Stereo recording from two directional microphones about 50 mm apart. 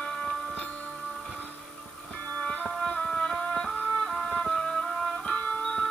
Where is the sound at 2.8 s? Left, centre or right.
Centre.